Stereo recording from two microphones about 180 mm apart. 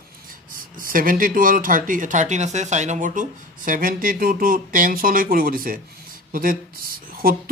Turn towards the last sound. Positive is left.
turn(degrees=-55)  # may be behind; listen again after turning